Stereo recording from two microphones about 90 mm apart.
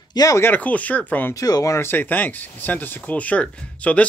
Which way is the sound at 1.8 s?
25° left (ahead or behind).